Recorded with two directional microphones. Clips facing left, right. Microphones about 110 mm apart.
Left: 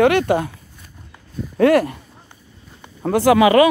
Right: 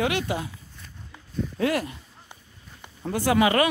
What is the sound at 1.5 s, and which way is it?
Speech, 60° left (ahead or behind).